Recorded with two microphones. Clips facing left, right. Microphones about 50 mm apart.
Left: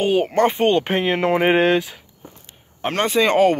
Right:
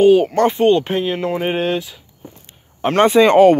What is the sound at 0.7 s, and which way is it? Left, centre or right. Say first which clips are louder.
Speech: even; left.